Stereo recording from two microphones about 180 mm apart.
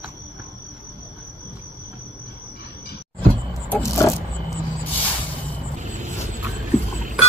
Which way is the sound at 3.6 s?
10° left (ahead or behind).